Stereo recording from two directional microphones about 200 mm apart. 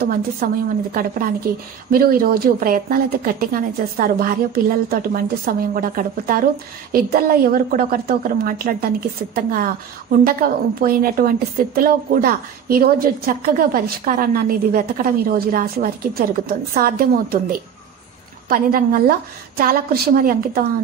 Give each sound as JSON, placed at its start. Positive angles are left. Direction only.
{"t": 0.4, "sound": "a woman's voice", "side_deg": -45}